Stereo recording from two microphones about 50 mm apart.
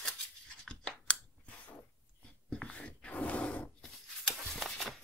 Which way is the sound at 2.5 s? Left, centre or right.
Left.